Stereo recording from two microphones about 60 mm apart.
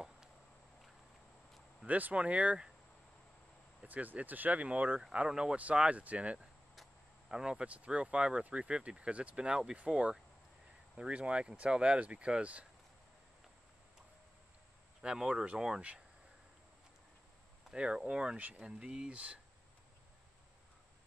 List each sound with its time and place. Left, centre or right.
1.9 s speech: right
3.8 s speech: right
15.0 s speech: centre
17.6 s speech: centre